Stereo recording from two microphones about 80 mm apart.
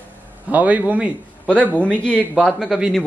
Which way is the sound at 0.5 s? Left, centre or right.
Centre.